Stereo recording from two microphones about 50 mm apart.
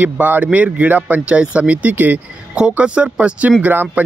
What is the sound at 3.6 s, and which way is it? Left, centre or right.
Speech, right.